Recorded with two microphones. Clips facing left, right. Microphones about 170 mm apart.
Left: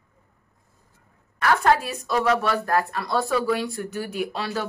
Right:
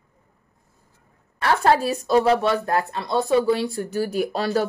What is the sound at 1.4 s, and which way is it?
Speech, 30° right (ahead or behind).